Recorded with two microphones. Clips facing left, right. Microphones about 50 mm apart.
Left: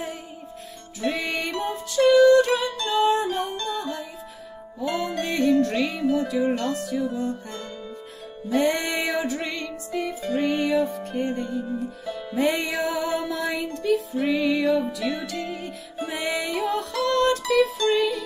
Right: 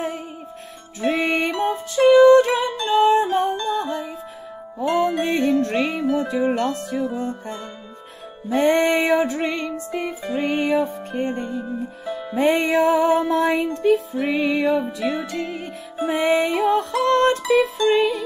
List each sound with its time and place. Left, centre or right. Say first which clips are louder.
1.0 s music: right 6 dB; right
3.1 s music: right 6 dB; right